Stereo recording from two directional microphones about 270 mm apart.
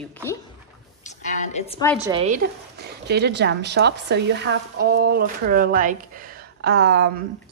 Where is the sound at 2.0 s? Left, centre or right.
Right.